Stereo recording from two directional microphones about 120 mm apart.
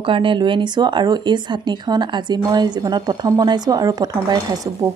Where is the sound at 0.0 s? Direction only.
45° right (ahead or behind).